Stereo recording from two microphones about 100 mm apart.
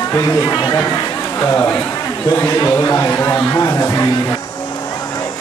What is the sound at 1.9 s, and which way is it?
A man's voice, 25° left (ahead or behind).